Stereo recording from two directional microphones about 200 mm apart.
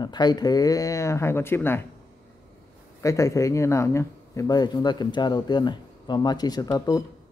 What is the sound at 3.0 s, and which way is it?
Speech, 15° left (ahead or behind).